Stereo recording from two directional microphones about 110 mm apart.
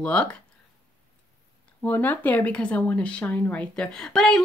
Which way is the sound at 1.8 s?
15° left (ahead or behind).